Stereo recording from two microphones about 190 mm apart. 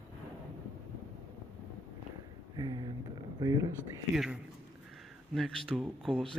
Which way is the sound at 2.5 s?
20° right (ahead or behind).